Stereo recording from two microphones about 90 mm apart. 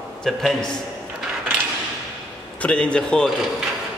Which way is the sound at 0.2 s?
5° left (ahead or behind).